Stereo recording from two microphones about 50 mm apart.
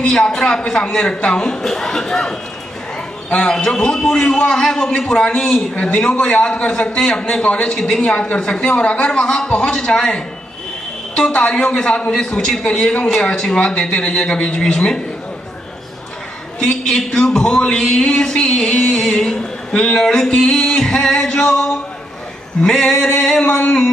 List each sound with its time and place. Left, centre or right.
0.0 s a woman's voice: centre
11.3 s a woman's voice: left
16.5 s speech: centre
18.7 s speech: left
22.6 s speech: centre